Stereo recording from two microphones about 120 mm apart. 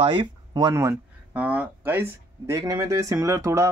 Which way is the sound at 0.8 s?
15° right (ahead or behind).